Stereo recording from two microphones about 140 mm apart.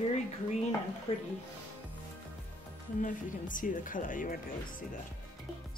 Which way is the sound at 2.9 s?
65° left (ahead or behind).